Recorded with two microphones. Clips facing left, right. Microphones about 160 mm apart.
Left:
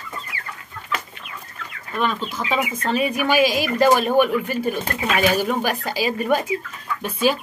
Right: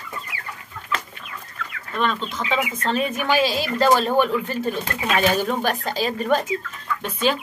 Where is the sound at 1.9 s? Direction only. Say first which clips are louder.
Left 1 dB; 10° left (ahead or behind).